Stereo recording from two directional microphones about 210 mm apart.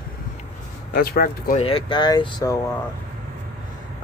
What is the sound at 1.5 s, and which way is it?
Speech, 25° left (ahead or behind).